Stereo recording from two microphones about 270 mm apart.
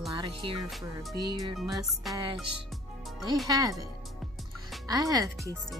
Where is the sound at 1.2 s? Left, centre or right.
Centre.